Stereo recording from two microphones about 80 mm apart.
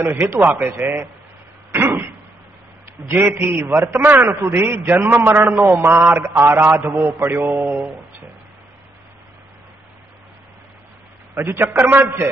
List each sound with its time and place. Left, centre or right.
0.0 s a man's voice: right
1.7 s a sound: right
3.1 s a man's voice: right
4.5 s a man's voice: right
11.3 s a man's voice: right